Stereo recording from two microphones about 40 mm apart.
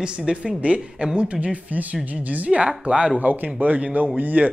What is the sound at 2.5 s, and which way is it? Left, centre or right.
Speech, centre.